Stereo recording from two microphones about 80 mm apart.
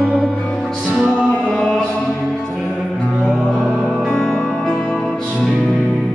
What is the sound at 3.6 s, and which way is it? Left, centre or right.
Music, centre.